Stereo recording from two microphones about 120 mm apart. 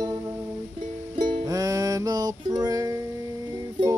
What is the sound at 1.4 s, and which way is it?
Music, 30° right (ahead or behind).